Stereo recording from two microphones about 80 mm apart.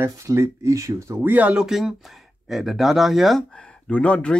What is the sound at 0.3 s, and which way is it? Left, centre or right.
Speech, right.